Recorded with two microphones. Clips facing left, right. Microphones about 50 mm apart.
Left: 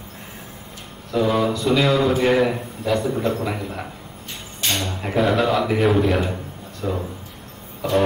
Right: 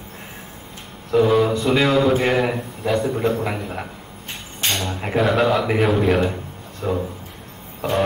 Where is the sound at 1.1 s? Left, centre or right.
Centre.